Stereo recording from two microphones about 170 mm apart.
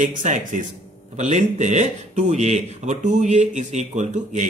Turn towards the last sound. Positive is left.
turn(degrees=-45)  # may be behind; listen again after turning